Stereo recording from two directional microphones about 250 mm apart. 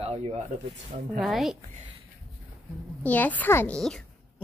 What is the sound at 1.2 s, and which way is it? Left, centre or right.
Speech, centre.